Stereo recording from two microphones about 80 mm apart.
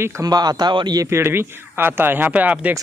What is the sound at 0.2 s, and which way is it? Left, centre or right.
Speech, right.